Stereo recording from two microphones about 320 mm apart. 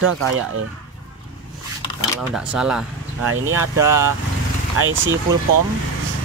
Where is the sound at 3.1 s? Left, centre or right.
Right.